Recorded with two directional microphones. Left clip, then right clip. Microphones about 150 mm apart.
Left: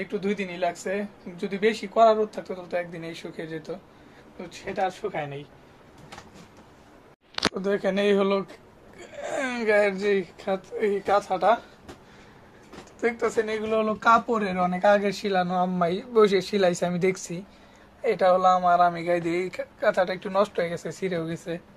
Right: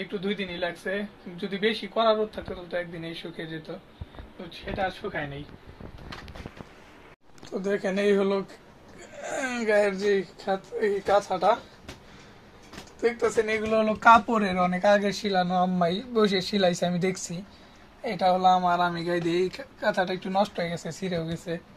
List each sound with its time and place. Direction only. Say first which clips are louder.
0.0 s speech: left 2 dB; 10° left (ahead or behind)
4.8 s speech: left 2 dB; 10° left (ahead or behind)
7.6 s speech: even; 10° left (ahead or behind)
11.1 s a man's voice: left 1 dB; centre (ahead or behind)
13.0 s a man's voice: even; centre (ahead or behind)
13.4 s speech: right 1 dB; 10° right (ahead or behind)
14.6 s a man's voice: left 2 dB; 10° right (ahead or behind)